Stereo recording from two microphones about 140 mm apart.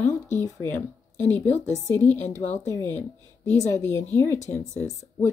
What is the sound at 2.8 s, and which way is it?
Speech, 15° left (ahead or behind).